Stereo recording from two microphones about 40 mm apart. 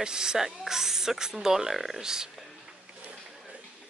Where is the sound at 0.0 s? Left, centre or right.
Centre.